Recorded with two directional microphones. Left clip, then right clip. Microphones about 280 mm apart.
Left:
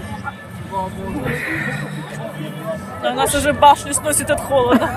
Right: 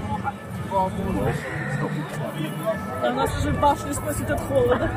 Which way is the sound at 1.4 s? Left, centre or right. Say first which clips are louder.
Left 6 dB; left.